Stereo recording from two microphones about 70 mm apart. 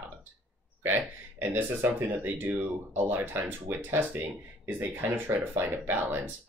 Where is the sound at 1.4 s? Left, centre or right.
Right.